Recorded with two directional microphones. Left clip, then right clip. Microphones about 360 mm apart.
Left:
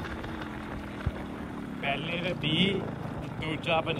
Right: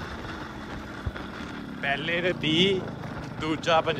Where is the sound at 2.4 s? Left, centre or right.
Right.